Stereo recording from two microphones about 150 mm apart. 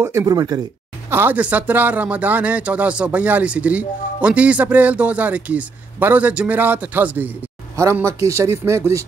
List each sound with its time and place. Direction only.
0.0 s speech: 20° right (ahead or behind)
1.1 s speech: 15° right (ahead or behind)